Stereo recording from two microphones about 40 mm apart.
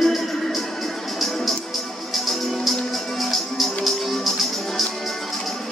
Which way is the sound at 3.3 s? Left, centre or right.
Centre.